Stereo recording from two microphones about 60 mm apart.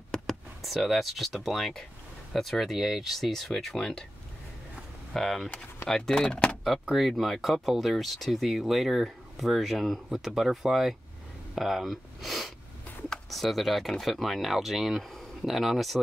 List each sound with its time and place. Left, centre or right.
0.1 s speech: centre
5.1 s speech: centre
5.5 s speech: left
5.9 s speech: centre
6.6 s speech: centre